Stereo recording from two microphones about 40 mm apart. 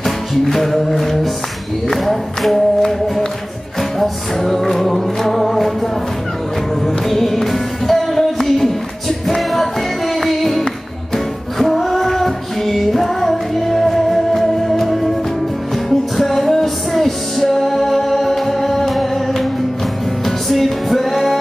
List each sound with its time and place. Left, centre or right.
0.0 s music: centre
1.9 s a sound: centre
4.0 s music: centre
7.1 s music: centre